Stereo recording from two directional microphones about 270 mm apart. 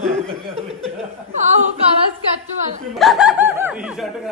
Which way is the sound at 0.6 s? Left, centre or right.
Right.